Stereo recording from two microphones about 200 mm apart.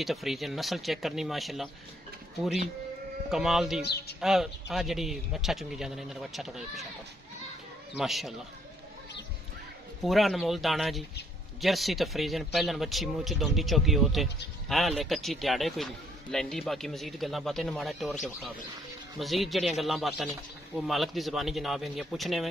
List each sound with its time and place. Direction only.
0.0 s a man's voice: centre (ahead or behind)
3.3 s a man's voice: centre (ahead or behind)
3.8 s speech: 55° left (ahead or behind)
4.2 s a man's voice: centre (ahead or behind)
8.0 s a man's voice: centre (ahead or behind)
10.0 s a man's voice: centre (ahead or behind)
19.1 s a man's voice: centre (ahead or behind)